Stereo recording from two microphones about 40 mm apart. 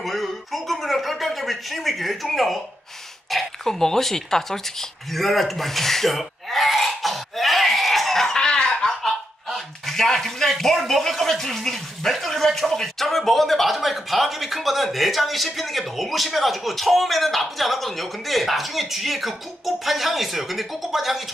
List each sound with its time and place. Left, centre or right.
0.0 s speech: centre
5.1 s throat clearing: centre
9.5 s a man's voice: centre